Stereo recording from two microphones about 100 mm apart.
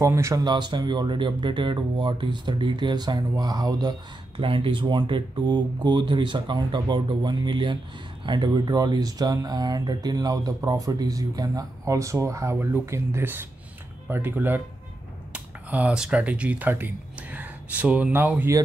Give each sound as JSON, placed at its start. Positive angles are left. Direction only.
{"t": 0.0, "sound": "speech", "side_deg": -30}
{"t": 0.4, "sound": "speech", "side_deg": -50}
{"t": 4.4, "sound": "speech", "side_deg": -60}